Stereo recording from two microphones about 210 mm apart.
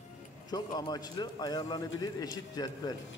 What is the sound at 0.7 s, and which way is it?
A man's voice, 20° left (ahead or behind).